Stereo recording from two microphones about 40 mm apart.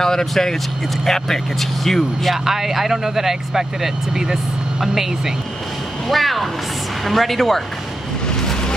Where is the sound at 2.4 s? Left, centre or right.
Centre.